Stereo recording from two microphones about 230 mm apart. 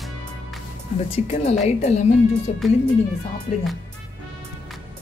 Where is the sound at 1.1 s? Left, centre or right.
Left.